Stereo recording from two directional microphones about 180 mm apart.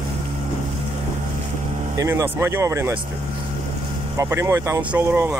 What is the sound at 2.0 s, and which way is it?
Speech, 15° right (ahead or behind).